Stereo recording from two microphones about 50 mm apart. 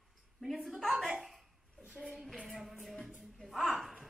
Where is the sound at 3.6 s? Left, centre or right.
Centre.